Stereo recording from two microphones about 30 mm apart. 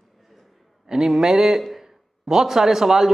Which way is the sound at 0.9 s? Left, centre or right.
Centre.